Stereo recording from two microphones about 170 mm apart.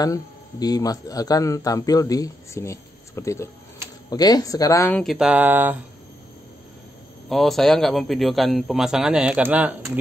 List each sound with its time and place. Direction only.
0.0 s speech: 20° left (ahead or behind)
5.0 s a sound: 5° right (ahead or behind)
7.2 s a man's voice: centre (ahead or behind)